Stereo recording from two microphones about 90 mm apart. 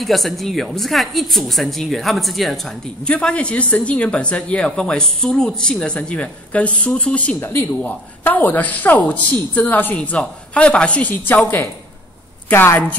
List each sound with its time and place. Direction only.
0.0 s a woman's voice: centre (ahead or behind)
7.3 s a woman's voice: 25° left (ahead or behind)